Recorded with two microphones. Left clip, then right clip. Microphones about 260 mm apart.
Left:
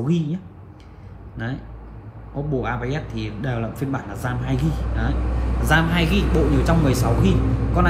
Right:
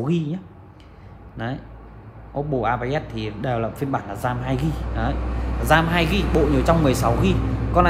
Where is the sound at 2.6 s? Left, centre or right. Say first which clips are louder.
Right 4 dB; right.